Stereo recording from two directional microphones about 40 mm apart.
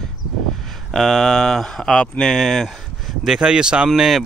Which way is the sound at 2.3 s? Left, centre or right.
Centre.